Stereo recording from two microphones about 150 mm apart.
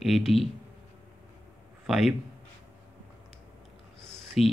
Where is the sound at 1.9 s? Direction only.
Centre (ahead or behind).